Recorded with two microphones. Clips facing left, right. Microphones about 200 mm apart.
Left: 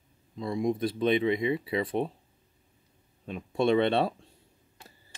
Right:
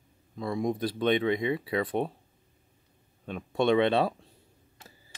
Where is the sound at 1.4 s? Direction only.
25° left (ahead or behind).